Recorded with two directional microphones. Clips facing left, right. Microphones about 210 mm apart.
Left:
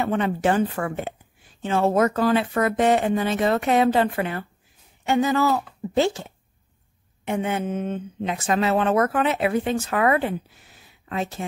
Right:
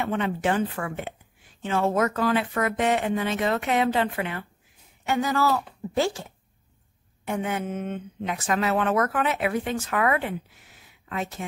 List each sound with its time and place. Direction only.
0.0 s speech: 40° left (ahead or behind)
5.0 s speech: 25° left (ahead or behind)